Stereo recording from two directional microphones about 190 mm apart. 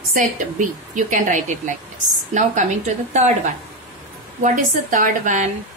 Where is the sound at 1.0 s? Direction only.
40° right (ahead or behind).